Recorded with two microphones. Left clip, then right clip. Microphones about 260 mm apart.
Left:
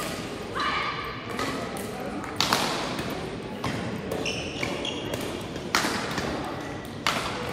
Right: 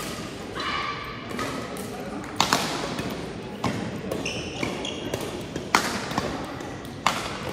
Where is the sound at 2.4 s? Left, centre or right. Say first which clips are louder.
Right 2 dB; right.